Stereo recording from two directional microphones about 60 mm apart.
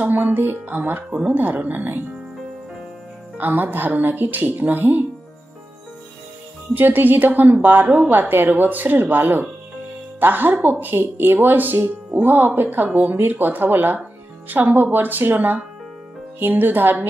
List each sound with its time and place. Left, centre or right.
0.0 s speech: right
3.3 s speech: right
6.7 s speech: right